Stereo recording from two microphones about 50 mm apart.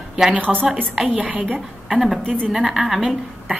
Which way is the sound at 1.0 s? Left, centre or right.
Right.